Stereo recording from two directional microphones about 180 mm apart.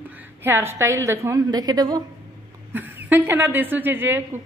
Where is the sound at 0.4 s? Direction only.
15° right (ahead or behind).